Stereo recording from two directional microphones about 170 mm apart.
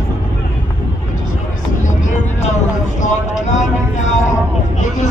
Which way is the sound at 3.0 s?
45° left (ahead or behind).